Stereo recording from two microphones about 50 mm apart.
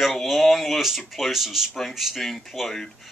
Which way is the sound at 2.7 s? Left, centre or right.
Centre.